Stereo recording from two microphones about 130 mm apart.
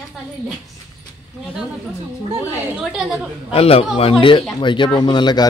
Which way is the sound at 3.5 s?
50° left (ahead or behind).